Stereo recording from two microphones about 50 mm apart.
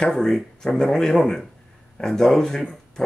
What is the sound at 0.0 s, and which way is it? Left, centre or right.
Speech, centre.